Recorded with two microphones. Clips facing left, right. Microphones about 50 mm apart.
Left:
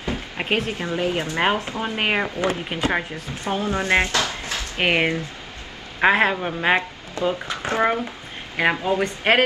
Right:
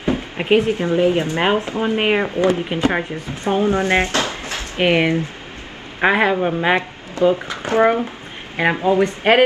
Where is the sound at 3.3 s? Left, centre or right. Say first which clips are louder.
Right 7 dB; right.